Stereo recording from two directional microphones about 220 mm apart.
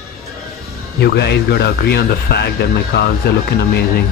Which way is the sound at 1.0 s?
50° left (ahead or behind).